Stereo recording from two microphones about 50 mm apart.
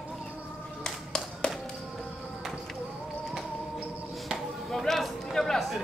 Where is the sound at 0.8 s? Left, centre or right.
Centre.